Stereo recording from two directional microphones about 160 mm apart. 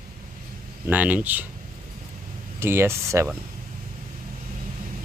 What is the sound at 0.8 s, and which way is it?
Speech, 10° right (ahead or behind).